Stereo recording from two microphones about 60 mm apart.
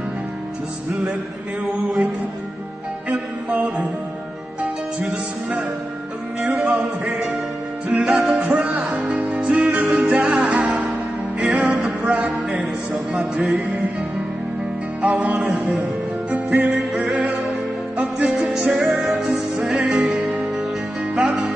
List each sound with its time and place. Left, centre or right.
3.1 s music: right
5.0 s music: right
15.0 s music: right; by 19.0 s centre
19.0 s music: right